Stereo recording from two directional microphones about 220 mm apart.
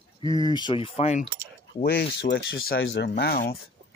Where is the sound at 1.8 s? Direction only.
50° left (ahead or behind).